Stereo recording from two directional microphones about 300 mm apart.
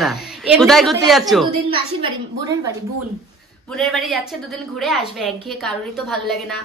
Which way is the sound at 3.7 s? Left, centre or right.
Centre.